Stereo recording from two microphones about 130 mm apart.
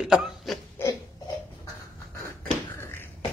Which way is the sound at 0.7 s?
25° left (ahead or behind).